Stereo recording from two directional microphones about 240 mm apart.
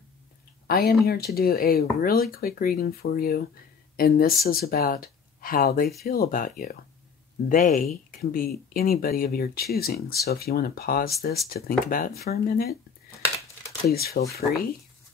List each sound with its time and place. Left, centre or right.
0.7 s speech: left
13.8 s speech: left